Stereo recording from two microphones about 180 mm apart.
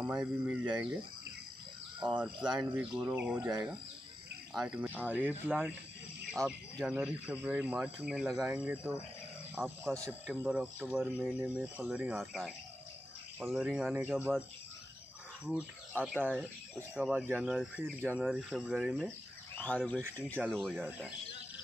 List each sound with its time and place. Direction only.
0.0 s speech: 5° right (ahead or behind)
2.0 s speech: 5° right (ahead or behind)
3.3 s speech: 20° right (ahead or behind)
4.6 s speech: 5° right (ahead or behind)
6.4 s speech: 20° right (ahead or behind)
6.8 s speech: 5° right (ahead or behind)
15.4 s speech: 5° right (ahead or behind)
20.2 s speech: 10° right (ahead or behind)
20.5 s speech: 5° left (ahead or behind)